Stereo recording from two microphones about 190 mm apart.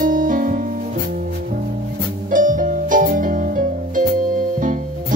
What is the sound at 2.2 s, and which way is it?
Music, 45° right (ahead or behind).